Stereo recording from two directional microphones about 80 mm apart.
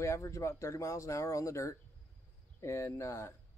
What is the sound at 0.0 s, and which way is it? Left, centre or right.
Speech, left.